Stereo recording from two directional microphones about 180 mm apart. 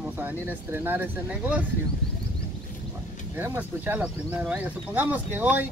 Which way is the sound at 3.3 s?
10° right (ahead or behind).